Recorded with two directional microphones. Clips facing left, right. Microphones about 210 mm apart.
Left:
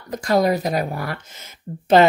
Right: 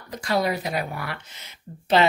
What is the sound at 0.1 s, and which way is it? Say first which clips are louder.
Speech: left 6 dB; 45° left (ahead or behind).